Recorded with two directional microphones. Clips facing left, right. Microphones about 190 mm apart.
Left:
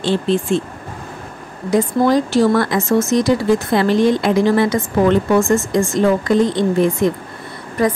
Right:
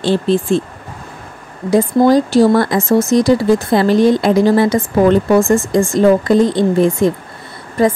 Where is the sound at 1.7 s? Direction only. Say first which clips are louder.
Right 4 dB; 35° right (ahead or behind).